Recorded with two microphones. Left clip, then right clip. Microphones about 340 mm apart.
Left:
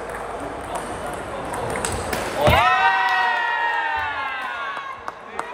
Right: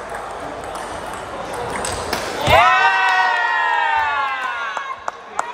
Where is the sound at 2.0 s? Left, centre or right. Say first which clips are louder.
Right 1 dB; centre.